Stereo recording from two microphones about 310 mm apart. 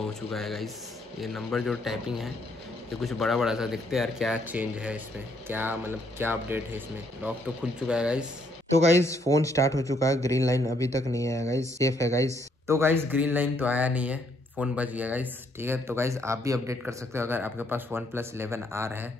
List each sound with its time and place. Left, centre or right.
0.0 s speech: centre
8.6 s speech: right
9.0 s speech: centre
12.6 s speech: centre